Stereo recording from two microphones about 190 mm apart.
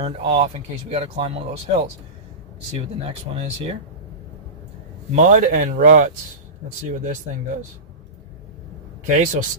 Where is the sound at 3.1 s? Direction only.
30° right (ahead or behind).